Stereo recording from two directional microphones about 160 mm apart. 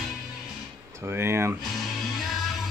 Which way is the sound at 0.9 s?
15° right (ahead or behind).